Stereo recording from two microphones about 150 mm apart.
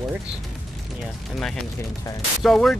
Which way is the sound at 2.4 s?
Centre (ahead or behind).